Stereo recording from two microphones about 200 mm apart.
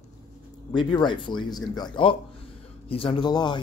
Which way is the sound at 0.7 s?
25° left (ahead or behind).